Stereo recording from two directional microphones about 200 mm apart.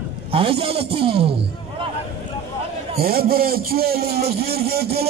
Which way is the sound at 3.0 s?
50° right (ahead or behind).